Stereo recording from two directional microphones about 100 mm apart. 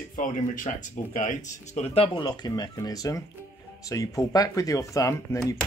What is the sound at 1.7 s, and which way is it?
Speech, 90° left.